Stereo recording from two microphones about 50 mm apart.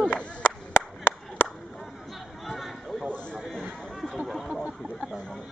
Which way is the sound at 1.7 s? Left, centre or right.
Centre.